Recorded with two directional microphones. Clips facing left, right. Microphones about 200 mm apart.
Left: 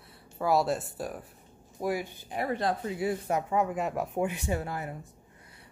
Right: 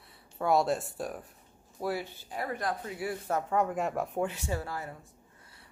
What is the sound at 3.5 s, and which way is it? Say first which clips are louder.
Speech: right 1 dB; 5° left (ahead or behind).